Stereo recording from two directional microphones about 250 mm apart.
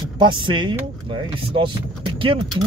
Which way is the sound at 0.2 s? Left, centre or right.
Centre.